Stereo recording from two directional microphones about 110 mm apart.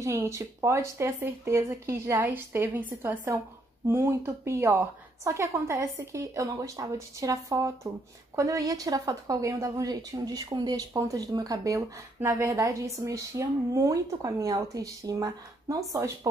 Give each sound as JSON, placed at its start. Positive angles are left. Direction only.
{"t": 0.0, "sound": "a woman's voice", "side_deg": -25}